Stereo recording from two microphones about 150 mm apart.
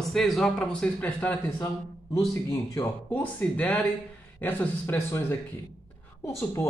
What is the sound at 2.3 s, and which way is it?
Speech, 20° left (ahead or behind).